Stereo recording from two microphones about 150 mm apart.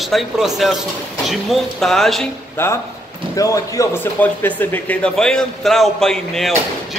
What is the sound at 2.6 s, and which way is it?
A man's voice, 15° left (ahead or behind).